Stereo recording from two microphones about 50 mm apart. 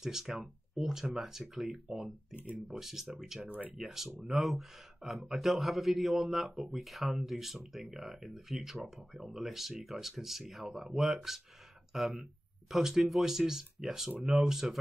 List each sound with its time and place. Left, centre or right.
0.0 s speech: centre
2.3 s speech: right
2.7 s speech: centre
3.4 s speech: right
3.7 s speech: centre